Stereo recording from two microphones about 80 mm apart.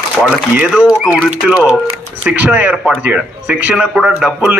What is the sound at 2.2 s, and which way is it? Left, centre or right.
A man's voice, right.